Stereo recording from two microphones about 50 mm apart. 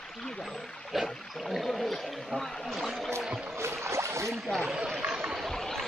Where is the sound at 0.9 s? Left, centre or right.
Centre.